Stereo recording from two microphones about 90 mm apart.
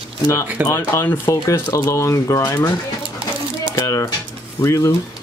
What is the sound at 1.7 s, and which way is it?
Speech, 35° left (ahead or behind).